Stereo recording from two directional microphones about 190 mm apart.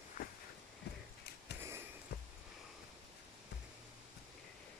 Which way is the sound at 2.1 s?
60° left (ahead or behind).